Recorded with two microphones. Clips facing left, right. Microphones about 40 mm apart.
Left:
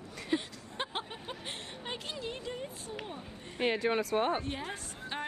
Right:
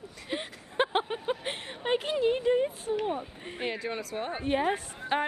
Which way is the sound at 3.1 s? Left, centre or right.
Right.